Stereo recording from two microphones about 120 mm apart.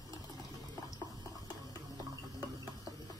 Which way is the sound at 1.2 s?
30° left (ahead or behind).